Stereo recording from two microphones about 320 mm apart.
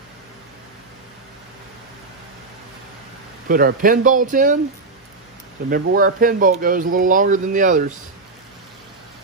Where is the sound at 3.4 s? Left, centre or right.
Right.